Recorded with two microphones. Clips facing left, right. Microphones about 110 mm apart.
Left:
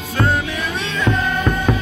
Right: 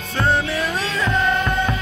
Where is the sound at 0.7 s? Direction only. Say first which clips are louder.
Even; 35° right (ahead or behind).